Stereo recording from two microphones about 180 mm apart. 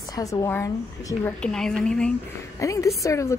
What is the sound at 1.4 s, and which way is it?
Speech, 5° left (ahead or behind).